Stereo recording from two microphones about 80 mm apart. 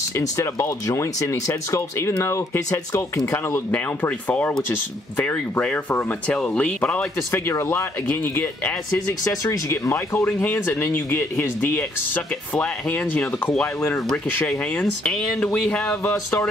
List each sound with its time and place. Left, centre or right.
0.1 s speech: left
3.7 s speech: centre
7.2 s speech: left
8.9 s speech: left; by 13.2 s centre
14.8 s speech: centre